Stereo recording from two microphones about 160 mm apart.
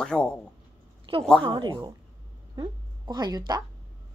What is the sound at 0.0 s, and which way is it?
Speech, 5° left (ahead or behind).